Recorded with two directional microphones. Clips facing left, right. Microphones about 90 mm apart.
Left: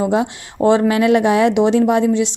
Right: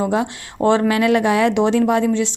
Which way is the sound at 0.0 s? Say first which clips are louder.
Left 2 dB; 20° left (ahead or behind).